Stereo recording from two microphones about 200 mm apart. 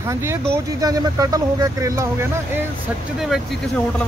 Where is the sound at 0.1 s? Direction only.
15° right (ahead or behind).